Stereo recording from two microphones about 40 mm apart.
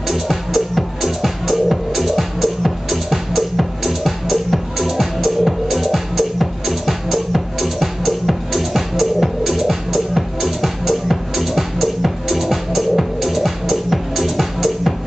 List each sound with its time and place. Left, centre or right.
0.1 s music: centre